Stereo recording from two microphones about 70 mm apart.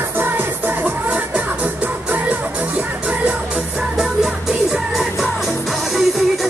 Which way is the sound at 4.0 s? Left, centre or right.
Centre.